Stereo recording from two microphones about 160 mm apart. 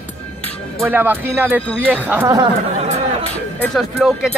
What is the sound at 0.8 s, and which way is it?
Speech, 10° right (ahead or behind).